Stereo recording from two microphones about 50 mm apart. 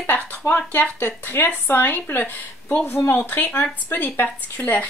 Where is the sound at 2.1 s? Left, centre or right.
Left.